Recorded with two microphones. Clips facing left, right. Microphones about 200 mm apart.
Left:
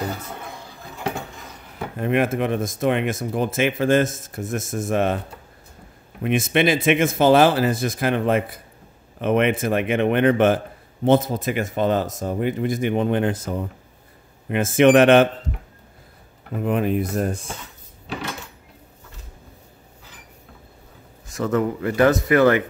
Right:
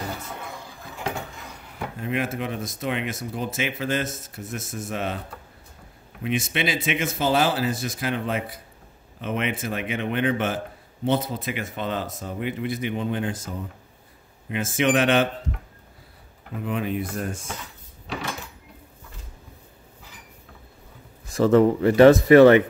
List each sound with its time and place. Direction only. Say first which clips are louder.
2.0 s speech: left 7 dB; 60° left (ahead or behind)
6.2 s speech: left 7 dB; 55° left (ahead or behind)
12.9 s speech: left 6 dB; 60° left (ahead or behind)
16.5 s speech: left 6 dB; 50° left (ahead or behind)
21.3 s speech: right 5 dB; 30° right (ahead or behind)